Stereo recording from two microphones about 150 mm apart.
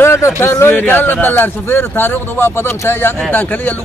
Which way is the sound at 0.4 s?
15° left (ahead or behind).